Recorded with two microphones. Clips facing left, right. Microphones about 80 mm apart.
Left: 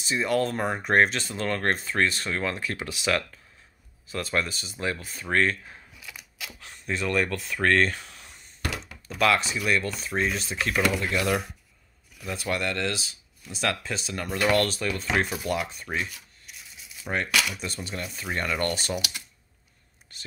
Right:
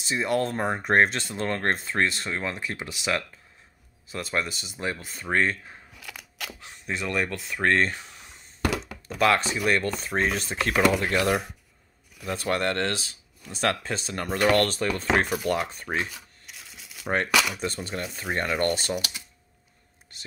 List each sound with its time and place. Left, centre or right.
0.1 s speech: right
5.9 s camera: right
6.6 s speech: centre
9.2 s speech: right
16.7 s a sound: right
17.1 s speech: right